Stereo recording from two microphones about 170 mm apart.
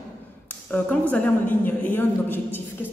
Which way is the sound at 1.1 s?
10° left (ahead or behind).